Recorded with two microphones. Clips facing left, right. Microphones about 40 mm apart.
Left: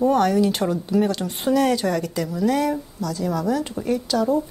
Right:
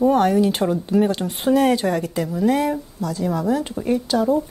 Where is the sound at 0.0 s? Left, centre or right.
Centre.